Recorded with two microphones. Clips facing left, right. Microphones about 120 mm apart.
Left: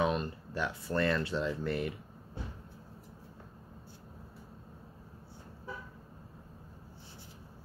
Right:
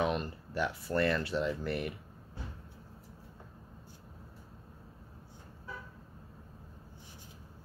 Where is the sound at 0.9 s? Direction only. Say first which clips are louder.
Even; 25° left (ahead or behind).